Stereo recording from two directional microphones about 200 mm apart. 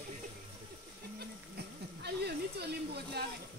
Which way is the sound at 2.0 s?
55° right (ahead or behind).